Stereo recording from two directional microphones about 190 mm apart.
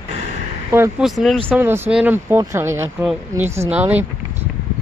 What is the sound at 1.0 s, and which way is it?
Speech, centre (ahead or behind).